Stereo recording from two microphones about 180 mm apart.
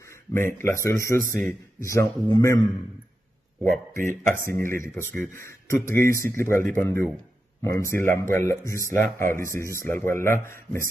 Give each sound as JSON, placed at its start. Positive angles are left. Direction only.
{"t": 0.0, "sound": "a sound", "side_deg": 15}
{"t": 0.8, "sound": "speech", "side_deg": 15}
{"t": 1.3, "sound": "speech", "side_deg": -45}
{"t": 1.8, "sound": "speech", "side_deg": 15}
{"t": 4.1, "sound": "speech", "side_deg": 15}